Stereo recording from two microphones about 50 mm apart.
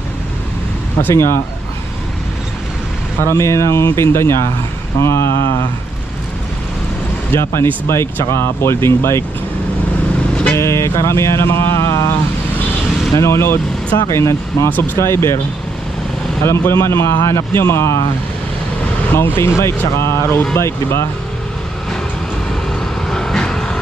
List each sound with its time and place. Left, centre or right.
1.1 s speech: left
3.2 s speech: left
7.3 s speech: left
10.5 s vehicle: left
13.2 s speech: left
13.9 s speech: left
14.8 s speech: left
16.4 s speech: left
19.1 s speech: left
23.0 s vehicle: centre